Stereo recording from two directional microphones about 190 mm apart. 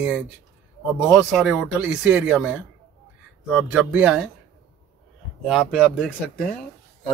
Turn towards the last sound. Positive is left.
turn(degrees=0)  # may be behind; listen again after turning